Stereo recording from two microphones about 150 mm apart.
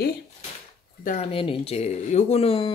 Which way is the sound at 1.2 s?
40° left (ahead or behind).